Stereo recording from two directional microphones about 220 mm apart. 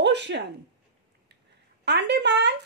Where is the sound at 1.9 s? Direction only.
50° right (ahead or behind).